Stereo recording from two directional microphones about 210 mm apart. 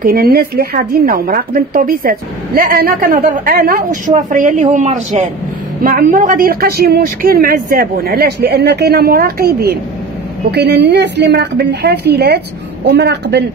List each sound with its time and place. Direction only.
0.0 s a woman's voice: 45° right (ahead or behind)